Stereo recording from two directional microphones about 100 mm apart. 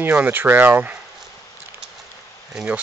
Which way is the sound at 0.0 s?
20° right (ahead or behind).